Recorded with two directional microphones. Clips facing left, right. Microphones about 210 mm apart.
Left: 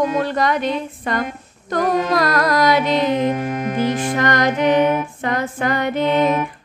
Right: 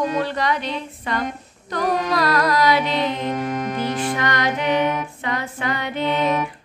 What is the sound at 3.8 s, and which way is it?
Music, 45° left (ahead or behind).